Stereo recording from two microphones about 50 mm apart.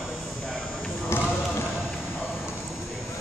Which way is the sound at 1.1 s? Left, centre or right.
Left.